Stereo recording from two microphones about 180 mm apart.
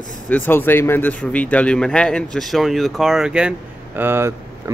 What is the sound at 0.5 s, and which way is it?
A man's voice, 10° left (ahead or behind).